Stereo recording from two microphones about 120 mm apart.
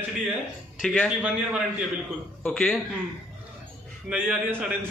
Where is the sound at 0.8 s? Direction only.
Centre (ahead or behind).